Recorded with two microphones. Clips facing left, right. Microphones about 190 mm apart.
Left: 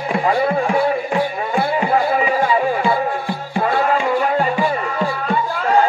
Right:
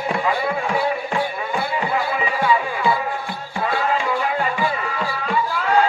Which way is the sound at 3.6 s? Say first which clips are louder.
Left 4 dB; 45° left (ahead or behind).